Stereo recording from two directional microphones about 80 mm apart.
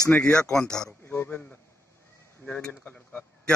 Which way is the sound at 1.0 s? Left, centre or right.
Left.